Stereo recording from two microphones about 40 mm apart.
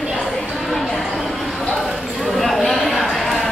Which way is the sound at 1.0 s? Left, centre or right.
Centre.